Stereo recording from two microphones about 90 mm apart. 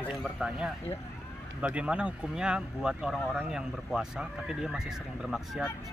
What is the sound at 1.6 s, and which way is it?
Speech, 15° right (ahead or behind).